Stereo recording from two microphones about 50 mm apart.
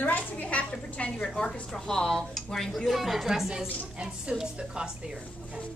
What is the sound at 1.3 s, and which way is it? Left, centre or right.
A woman's voice, centre.